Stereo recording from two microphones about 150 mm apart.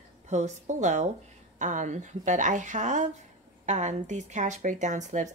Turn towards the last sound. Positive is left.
turn(degrees=-55)  # may be behind; listen again after turning